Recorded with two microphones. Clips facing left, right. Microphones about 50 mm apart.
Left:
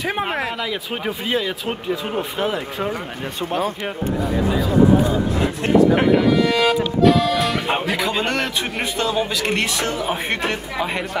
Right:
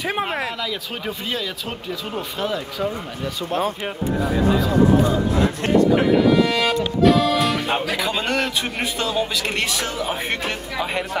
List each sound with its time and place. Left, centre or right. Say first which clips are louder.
0.0 s speech: left 1 dB; centre; by 3.7 s left
6.2 s speech: left 1 dB; centre